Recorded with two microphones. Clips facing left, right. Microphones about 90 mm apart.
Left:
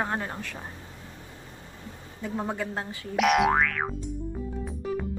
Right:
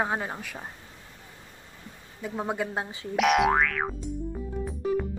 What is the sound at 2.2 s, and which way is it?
Speech, 10° right (ahead or behind).